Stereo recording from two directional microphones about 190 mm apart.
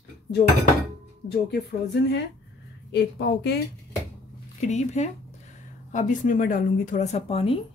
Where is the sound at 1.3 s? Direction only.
55° left (ahead or behind).